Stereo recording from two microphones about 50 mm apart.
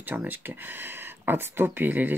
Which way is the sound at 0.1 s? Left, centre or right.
Right.